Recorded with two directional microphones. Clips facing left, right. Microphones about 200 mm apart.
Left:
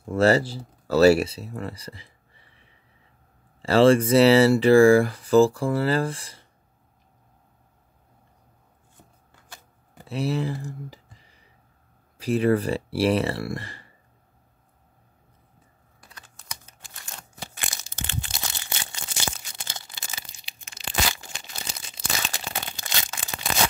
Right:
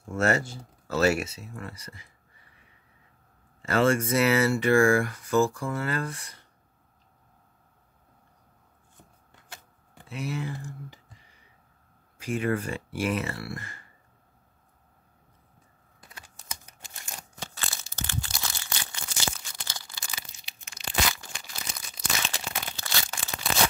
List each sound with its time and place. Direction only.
0.0 s speech: 30° left (ahead or behind)
3.6 s speech: 30° left (ahead or behind)
9.9 s speech: 35° left (ahead or behind)
16.0 s computer keyboard: 20° right (ahead or behind)
17.4 s crumpling: 15° left (ahead or behind)
18.0 s a sound: 20° left (ahead or behind)
22.8 s a sound: 20° left (ahead or behind)